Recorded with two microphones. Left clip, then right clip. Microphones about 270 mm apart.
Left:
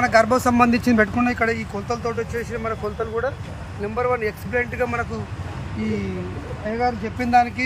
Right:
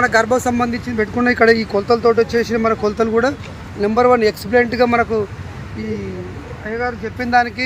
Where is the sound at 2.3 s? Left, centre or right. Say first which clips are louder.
Right 10 dB; right.